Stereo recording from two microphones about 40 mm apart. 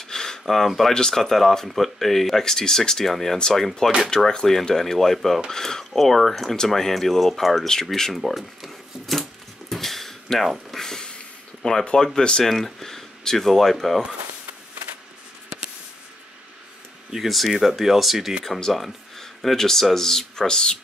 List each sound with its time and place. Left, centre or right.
0.0 s a sound: centre
0.9 s speech: centre
8.2 s a sound: centre
11.6 s speech: left
12.4 s speech: centre
17.1 s speech: centre